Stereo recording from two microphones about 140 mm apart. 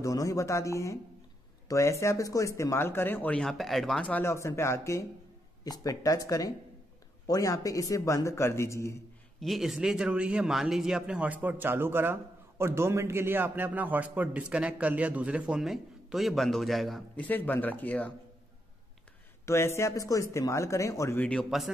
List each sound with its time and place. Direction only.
0.0 s speech: 25° left (ahead or behind); by 4.2 s 5° left (ahead or behind)
4.2 s speech: 20° left (ahead or behind)
9.4 s speech: centre (ahead or behind)
17.3 s speech: 15° left (ahead or behind)
19.4 s speech: 20° left (ahead or behind)
21.2 s a man's voice: 5° left (ahead or behind)